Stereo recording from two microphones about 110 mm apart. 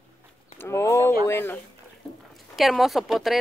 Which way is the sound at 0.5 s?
25° left (ahead or behind).